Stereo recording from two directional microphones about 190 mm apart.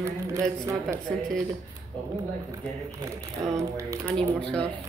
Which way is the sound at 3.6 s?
15° right (ahead or behind).